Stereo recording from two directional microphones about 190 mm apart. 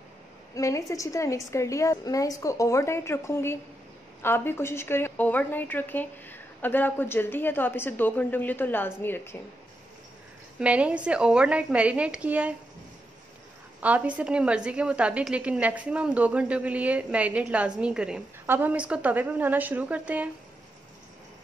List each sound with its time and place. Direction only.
0.6 s a woman's voice: 15° left (ahead or behind)
10.6 s a woman's voice: 5° right (ahead or behind)
13.7 s a woman's voice: 5° right (ahead or behind)